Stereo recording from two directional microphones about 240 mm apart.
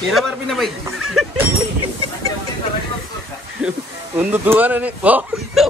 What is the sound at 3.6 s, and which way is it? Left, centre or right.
Speech, centre.